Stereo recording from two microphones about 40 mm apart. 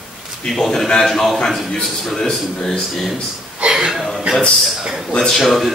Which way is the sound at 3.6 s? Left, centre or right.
Right.